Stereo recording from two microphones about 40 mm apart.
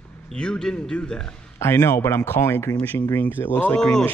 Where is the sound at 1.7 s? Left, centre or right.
Left.